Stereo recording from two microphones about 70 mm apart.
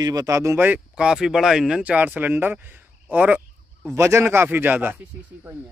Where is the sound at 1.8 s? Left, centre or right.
Right.